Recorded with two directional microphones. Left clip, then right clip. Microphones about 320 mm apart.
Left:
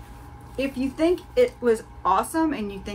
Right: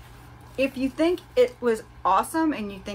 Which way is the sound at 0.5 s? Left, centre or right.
Centre.